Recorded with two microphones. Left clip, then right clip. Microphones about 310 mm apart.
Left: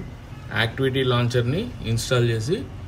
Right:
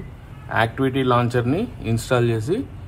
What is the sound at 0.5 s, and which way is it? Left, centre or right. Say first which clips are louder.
A man's voice: right 3 dB; centre.